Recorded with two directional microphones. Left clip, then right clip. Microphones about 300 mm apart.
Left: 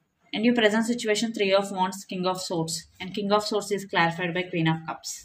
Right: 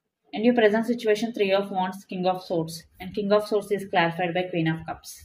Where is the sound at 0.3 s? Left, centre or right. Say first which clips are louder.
Right 2 dB; left.